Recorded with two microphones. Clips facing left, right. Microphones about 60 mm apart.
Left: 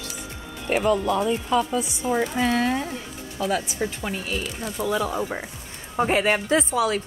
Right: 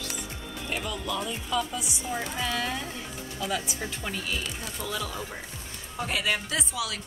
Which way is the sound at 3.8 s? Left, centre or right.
Centre.